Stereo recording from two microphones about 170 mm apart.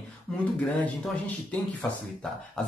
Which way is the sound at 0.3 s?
10° left (ahead or behind).